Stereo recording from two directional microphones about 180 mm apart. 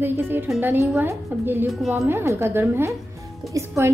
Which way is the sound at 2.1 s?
15° right (ahead or behind).